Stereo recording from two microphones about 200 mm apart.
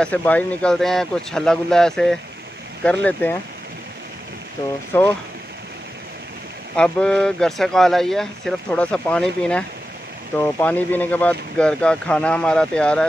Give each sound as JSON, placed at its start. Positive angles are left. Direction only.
{"t": 0.0, "sound": "speech", "side_deg": 5}
{"t": 4.9, "sound": "speech", "side_deg": 10}
{"t": 6.8, "sound": "speech", "side_deg": 5}